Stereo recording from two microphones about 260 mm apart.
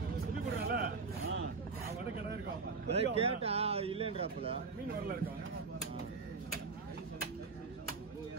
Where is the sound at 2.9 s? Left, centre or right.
Right.